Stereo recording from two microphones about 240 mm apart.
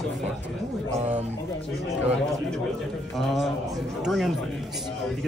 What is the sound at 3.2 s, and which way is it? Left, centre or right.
A man's voice, centre.